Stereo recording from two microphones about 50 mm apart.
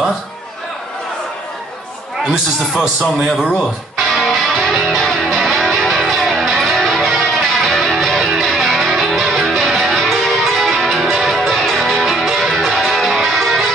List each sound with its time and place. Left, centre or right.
2.2 s a man's voice: centre
4.0 s music: centre